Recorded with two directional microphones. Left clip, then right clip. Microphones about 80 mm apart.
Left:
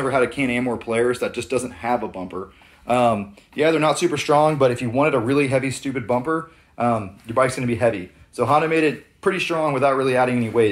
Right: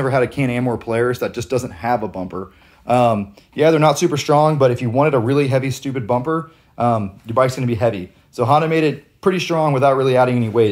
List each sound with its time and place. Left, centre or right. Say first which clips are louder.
0.0 s speech: right 2 dB; right
3.6 s speech: right 4 dB; right
7.4 s speech: right 2 dB; centre